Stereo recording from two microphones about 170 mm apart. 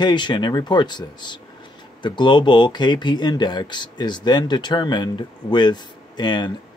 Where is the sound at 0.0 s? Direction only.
25° left (ahead or behind).